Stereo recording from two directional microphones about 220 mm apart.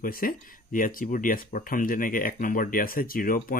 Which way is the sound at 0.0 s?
40° left (ahead or behind).